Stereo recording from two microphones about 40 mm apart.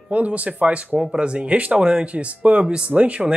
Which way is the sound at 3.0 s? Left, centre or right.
Right.